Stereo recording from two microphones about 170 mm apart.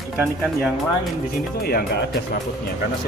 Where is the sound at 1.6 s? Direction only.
65° left (ahead or behind).